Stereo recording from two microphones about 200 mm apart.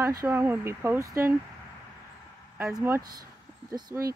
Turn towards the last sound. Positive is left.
turn(degrees=-20)  # may be behind; listen again after turning